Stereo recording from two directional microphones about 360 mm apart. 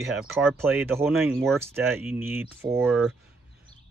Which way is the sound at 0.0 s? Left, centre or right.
Centre.